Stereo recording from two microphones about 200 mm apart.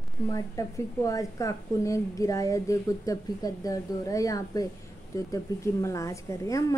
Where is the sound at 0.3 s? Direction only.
15° left (ahead or behind).